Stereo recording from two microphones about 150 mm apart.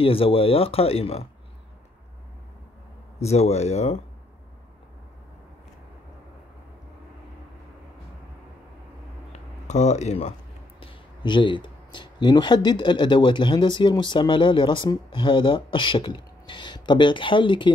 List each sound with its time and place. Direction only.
0.0 s speech: 40° left (ahead or behind)
3.2 s speech: 45° left (ahead or behind)
9.3 s speech: 50° left (ahead or behind)
10.8 s speech: 35° left (ahead or behind)